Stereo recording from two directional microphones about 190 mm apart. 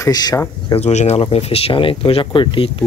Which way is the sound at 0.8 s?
35° left (ahead or behind).